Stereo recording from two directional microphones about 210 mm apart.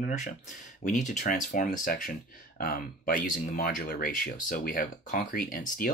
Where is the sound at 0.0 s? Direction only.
35° left (ahead or behind).